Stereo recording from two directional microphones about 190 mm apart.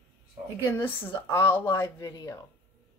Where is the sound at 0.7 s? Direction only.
10° left (ahead or behind).